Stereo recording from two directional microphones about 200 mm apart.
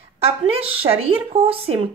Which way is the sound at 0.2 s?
30° right (ahead or behind).